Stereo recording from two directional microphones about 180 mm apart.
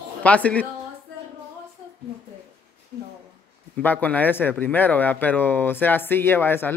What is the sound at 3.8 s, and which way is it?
Speech, 10° left (ahead or behind).